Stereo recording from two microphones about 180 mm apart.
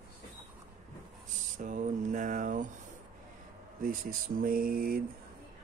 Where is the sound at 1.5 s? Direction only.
45° right (ahead or behind).